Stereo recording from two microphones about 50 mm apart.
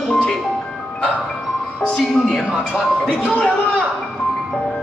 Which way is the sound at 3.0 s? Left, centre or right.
Centre.